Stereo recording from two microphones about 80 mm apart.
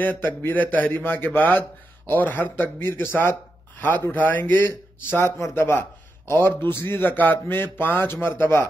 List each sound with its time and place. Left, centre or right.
0.0 s a man's voice: left